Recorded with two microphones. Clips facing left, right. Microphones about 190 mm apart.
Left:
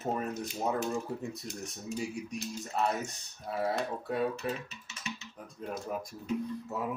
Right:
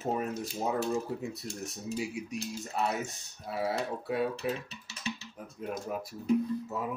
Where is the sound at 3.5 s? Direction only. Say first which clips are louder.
Even; 5° right (ahead or behind).